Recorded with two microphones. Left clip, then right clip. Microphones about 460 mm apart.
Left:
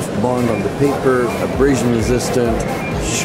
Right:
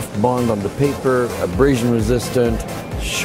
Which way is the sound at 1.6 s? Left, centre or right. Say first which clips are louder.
Even; right.